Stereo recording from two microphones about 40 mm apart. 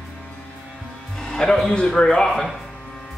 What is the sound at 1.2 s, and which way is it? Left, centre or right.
Music, centre.